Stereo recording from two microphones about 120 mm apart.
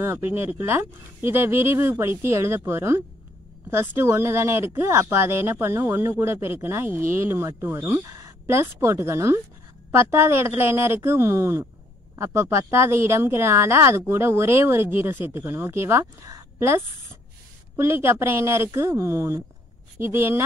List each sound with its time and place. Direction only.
0.0 s speech: 20° right (ahead or behind)